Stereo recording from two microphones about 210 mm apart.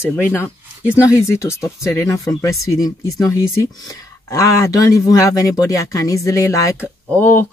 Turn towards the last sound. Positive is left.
turn(degrees=10)  # may be behind; listen again after turning